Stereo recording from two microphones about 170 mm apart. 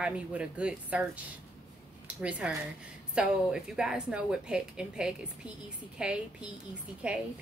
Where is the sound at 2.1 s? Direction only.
5° right (ahead or behind).